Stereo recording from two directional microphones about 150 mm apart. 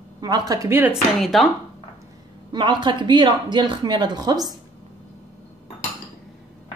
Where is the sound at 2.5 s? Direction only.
30° right (ahead or behind).